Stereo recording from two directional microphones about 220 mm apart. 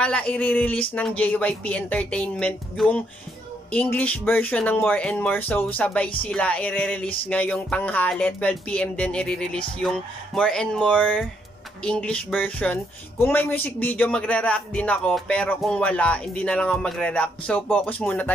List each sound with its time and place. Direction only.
0.0 s a man's voice: 5° left (ahead or behind)